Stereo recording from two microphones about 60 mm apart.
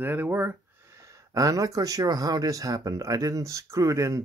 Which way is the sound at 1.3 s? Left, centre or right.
Right.